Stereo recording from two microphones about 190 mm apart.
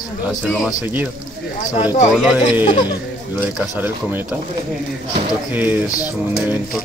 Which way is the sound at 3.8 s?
10° right (ahead or behind).